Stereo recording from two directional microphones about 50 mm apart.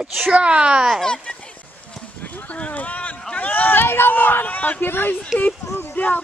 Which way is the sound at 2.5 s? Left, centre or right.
Left.